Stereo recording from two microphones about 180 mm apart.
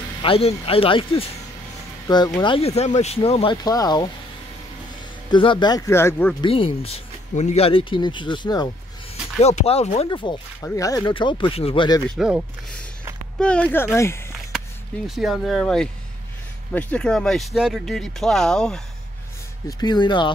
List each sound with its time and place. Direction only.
0.2 s speech: 30° left (ahead or behind)
3.6 s speech: 20° left (ahead or behind)
5.3 s speech: 25° left (ahead or behind)
6.4 s speech: 30° left (ahead or behind)
9.1 s speech: 35° left (ahead or behind)
10.0 s speech: 25° left (ahead or behind)
12.2 s speech: 5° right (ahead or behind)
13.4 s speech: 5° left (ahead or behind)
15.0 s speech: centre (ahead or behind)
19.8 s speech: 25° left (ahead or behind)